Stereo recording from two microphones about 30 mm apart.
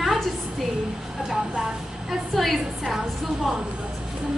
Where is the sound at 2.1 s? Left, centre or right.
Centre.